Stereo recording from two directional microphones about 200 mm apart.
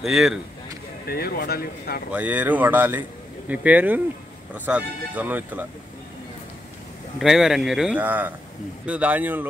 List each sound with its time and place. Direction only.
0.0 s speech: centre (ahead or behind)
1.0 s speech: 50° left (ahead or behind)
2.1 s speech: 5° right (ahead or behind)
7.2 s speech: centre (ahead or behind)